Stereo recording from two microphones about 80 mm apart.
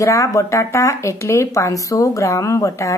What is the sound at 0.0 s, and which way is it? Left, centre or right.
A woman's voice, left.